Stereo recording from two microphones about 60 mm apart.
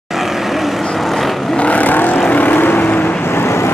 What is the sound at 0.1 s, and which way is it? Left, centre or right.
Vehicle, centre.